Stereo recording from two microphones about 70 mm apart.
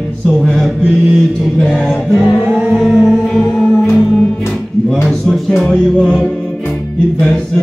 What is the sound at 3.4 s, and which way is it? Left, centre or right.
Music, centre.